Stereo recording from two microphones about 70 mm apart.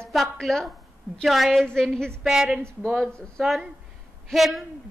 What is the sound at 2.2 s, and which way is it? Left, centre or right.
Speech, centre.